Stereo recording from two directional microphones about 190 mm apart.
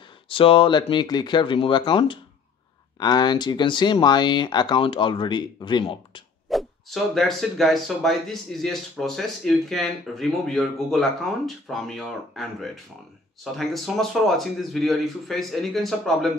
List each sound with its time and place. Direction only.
0.3 s speech: 30° left (ahead or behind)
6.5 s speech: centre (ahead or behind)